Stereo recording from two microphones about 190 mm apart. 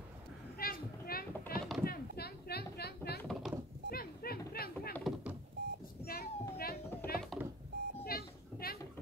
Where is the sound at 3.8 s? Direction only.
50° left (ahead or behind).